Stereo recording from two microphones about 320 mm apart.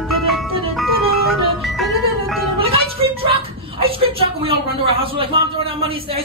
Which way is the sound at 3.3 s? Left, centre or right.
Centre.